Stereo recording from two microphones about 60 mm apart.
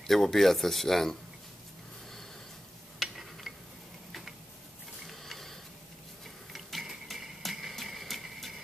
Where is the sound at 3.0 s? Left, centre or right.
Centre.